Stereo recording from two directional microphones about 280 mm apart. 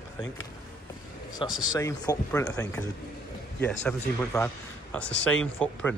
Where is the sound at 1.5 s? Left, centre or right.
Left.